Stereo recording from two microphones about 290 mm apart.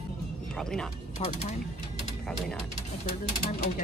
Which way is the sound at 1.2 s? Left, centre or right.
Left.